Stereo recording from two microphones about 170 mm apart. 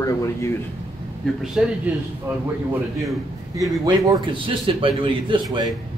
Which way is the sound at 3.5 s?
20° right (ahead or behind).